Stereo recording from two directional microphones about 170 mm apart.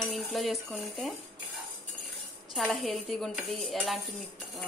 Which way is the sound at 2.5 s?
Centre (ahead or behind).